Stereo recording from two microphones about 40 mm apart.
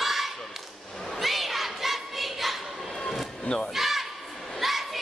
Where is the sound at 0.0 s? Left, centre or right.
Centre.